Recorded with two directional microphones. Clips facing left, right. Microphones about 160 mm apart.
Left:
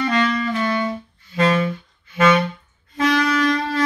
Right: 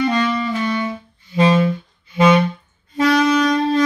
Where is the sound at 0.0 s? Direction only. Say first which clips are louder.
Right 2 dB; 15° right (ahead or behind).